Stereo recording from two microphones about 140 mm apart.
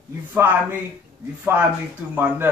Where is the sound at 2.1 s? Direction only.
15° right (ahead or behind).